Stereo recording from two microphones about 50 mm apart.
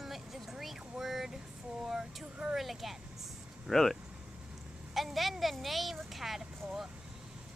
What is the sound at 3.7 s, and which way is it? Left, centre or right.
Speech, centre.